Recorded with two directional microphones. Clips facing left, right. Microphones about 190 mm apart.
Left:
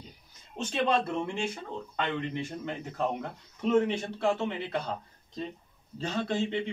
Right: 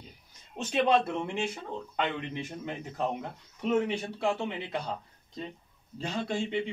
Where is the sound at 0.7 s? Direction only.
15° right (ahead or behind).